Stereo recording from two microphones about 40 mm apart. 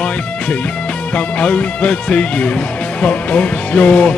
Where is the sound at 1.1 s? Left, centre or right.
Left.